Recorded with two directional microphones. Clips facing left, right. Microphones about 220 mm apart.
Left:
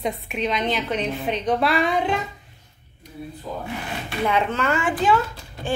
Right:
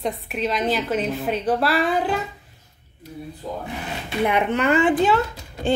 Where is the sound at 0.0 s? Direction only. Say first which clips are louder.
Even; centre (ahead or behind).